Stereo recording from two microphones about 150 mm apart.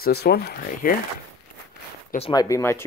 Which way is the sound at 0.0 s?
90° left.